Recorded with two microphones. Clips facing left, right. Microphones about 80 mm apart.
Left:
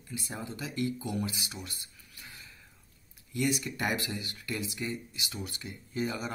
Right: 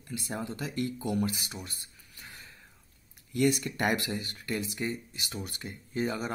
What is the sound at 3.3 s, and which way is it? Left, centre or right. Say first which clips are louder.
Speech: right 4 dB; right.